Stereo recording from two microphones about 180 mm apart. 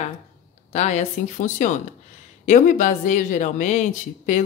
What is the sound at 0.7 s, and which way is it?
Speech, 40° left (ahead or behind).